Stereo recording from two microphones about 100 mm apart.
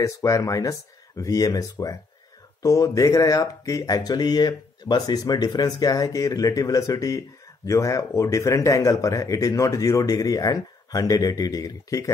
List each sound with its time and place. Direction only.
0.0 s speech: 35° left (ahead or behind)